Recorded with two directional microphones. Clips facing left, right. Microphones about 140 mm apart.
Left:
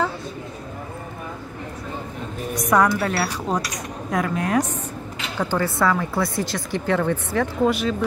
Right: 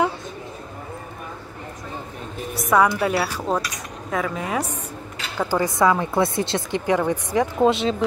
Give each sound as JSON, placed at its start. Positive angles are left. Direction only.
{"t": 2.5, "sound": "a woman's voice", "side_deg": -5}
{"t": 6.9, "sound": "speech", "side_deg": -15}